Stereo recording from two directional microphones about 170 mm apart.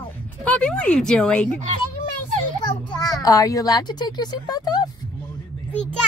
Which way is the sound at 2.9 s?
5° left (ahead or behind).